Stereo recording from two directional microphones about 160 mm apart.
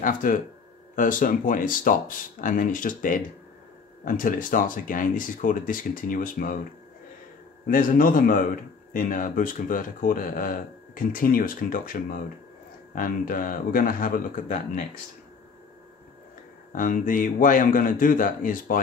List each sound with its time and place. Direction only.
0.0 s speech: 60° left (ahead or behind)
7.6 s speech: 60° left (ahead or behind)
16.7 s speech: 55° left (ahead or behind)